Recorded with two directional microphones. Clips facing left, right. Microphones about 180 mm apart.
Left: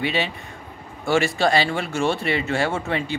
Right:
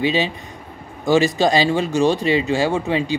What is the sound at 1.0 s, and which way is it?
Speech, 20° right (ahead or behind).